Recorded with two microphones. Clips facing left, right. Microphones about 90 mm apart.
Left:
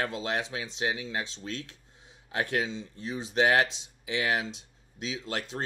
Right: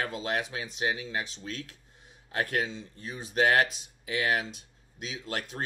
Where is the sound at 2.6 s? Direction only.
25° left (ahead or behind).